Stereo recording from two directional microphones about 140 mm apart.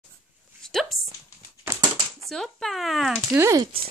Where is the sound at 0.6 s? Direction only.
Centre (ahead or behind).